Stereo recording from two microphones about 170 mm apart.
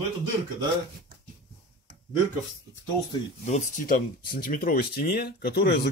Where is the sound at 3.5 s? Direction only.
50° left (ahead or behind).